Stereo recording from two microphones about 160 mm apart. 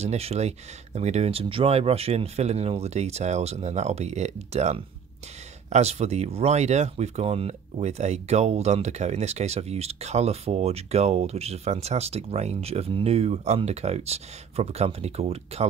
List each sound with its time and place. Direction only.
0.0 s speech: 40° right (ahead or behind)